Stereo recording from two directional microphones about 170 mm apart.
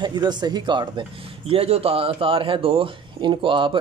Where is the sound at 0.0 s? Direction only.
25° right (ahead or behind).